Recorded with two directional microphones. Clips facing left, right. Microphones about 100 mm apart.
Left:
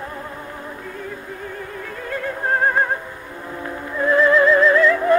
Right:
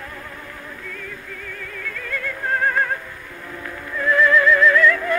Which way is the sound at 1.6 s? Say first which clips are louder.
Left 2 dB; 30° left (ahead or behind).